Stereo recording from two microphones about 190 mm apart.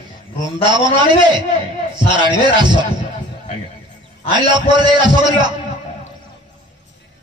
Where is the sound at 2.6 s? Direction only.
25° right (ahead or behind).